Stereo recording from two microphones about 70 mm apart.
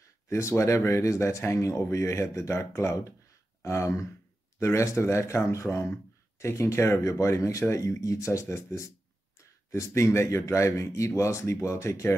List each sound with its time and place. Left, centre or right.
0.3 s speech: left